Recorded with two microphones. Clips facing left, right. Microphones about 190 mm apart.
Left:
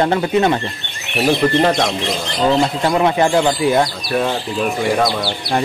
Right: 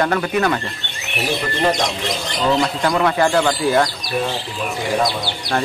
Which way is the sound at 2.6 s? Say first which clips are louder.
Left 2 dB; 25° left (ahead or behind).